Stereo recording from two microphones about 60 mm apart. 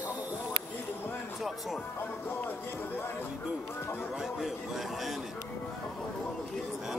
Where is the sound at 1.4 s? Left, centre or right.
Centre.